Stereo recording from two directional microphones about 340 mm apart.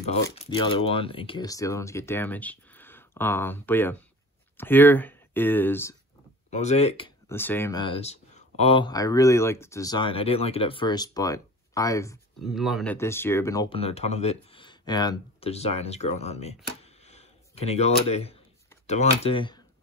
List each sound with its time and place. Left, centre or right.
0.4 s speech: centre
6.5 s speech: centre